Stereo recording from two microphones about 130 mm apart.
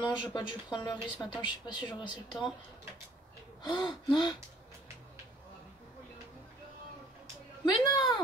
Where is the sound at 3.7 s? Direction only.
35° left (ahead or behind).